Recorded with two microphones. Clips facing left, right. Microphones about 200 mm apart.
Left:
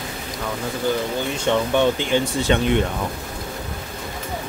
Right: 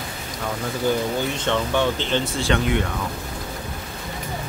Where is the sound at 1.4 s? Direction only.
15° left (ahead or behind).